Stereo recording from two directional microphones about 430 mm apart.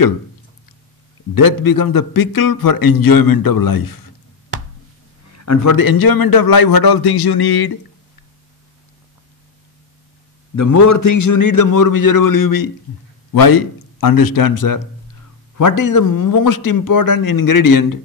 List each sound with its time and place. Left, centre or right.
1.3 s a man's voice: left
5.3 s a man's voice: left
10.5 s a man's voice: left